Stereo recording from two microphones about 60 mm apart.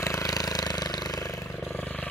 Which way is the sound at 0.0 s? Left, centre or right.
Left.